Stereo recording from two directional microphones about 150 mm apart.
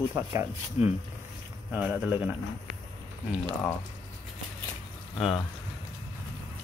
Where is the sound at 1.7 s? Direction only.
5° right (ahead or behind).